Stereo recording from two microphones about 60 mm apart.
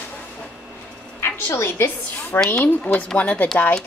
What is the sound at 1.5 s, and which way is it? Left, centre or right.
Speech, left.